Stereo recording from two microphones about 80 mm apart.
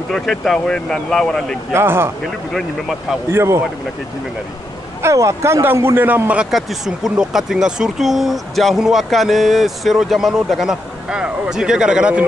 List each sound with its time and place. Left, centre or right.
0.1 s speech: centre
1.7 s a man's voice: right
2.5 s speech: centre
3.3 s a man's voice: right
5.0 s a man's voice: right
6.5 s speech: centre